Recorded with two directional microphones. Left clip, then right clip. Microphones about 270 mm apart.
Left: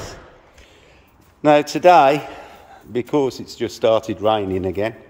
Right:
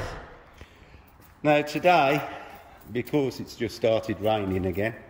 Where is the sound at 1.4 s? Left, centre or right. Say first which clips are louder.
Left 8 dB; centre.